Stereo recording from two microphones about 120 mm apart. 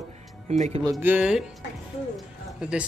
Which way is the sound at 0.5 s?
80° right.